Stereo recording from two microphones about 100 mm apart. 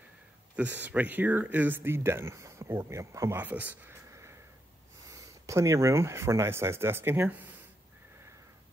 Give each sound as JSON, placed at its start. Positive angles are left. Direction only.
{"t": 0.6, "sound": "speech", "side_deg": -15}
{"t": 3.3, "sound": "speech", "side_deg": -15}
{"t": 4.1, "sound": "a sound", "side_deg": -25}
{"t": 5.1, "sound": "speech", "side_deg": -30}